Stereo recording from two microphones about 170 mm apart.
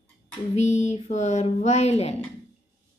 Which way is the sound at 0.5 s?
40° left (ahead or behind).